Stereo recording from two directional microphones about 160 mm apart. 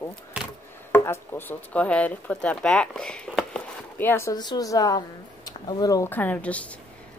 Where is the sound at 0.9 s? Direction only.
15° left (ahead or behind).